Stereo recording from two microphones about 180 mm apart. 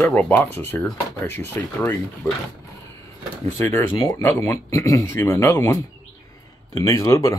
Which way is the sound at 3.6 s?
15° left (ahead or behind).